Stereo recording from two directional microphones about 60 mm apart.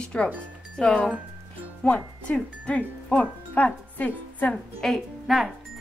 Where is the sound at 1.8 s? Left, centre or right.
Left.